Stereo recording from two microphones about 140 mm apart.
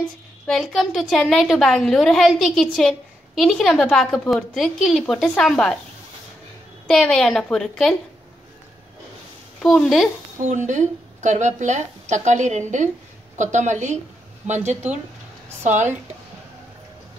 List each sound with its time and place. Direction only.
0.5 s a woman's voice: centre (ahead or behind)
6.9 s a woman's voice: 5° left (ahead or behind)
9.6 s a woman's voice: 5° left (ahead or behind)
10.5 s a woman's voice: 60° right (ahead or behind)